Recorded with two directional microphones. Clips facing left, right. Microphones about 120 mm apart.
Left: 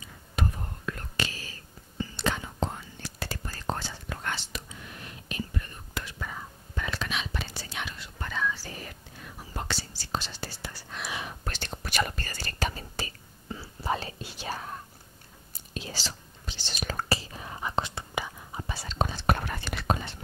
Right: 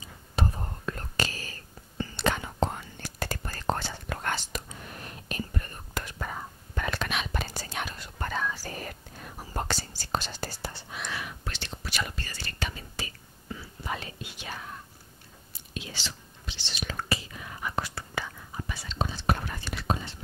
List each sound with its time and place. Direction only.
0.0 s whispering: 30° right (ahead or behind)
10.9 s whispering: 10° right (ahead or behind)
11.4 s whispering: 45° left (ahead or behind); by 18.7 s 20° left (ahead or behind)
18.7 s whispering: 35° left (ahead or behind)
18.9 s whispering: 55° left (ahead or behind)